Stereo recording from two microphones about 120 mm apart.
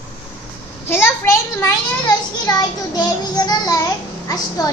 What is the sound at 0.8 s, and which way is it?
A child's voice, 20° left (ahead or behind).